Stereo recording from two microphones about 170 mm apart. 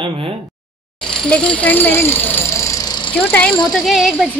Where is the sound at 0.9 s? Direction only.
5° left (ahead or behind); by 3.1 s 25° left (ahead or behind).